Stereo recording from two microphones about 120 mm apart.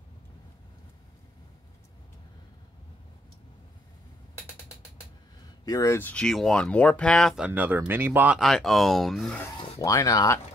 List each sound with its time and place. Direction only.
5.7 s speech: 30° left (ahead or behind)
5.9 s speech: 10° left (ahead or behind)
7.3 s speech: 15° right (ahead or behind)
8.4 s speech: centre (ahead or behind)
9.8 s speech: 25° left (ahead or behind)